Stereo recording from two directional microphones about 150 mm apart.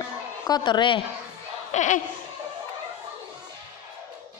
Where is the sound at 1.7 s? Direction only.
55° left (ahead or behind).